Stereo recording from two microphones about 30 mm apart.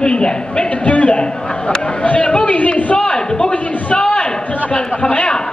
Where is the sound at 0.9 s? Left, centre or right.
Left.